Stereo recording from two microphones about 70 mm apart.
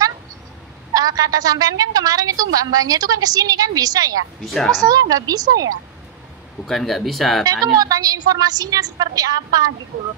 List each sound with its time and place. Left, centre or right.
0.9 s a woman's voice: right
6.6 s speech: centre
7.6 s a woman's voice: right